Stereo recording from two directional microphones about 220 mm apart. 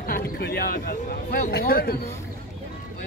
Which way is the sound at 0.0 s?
45° left (ahead or behind).